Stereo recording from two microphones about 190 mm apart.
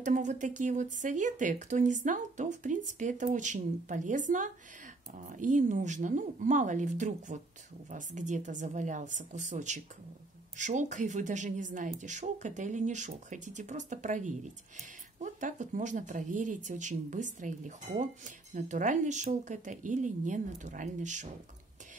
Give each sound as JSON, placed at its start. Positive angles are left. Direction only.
{"t": 0.0, "sound": "speech", "side_deg": -40}